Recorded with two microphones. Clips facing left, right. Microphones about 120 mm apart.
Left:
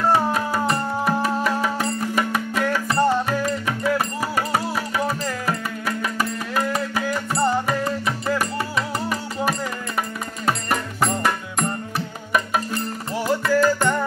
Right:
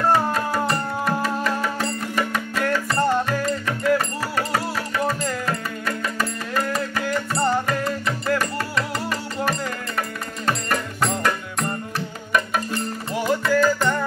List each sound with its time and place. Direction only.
0.1 s music: 10° left (ahead or behind)
10.4 s music: 10° left (ahead or behind)
13.2 s music: 5° left (ahead or behind)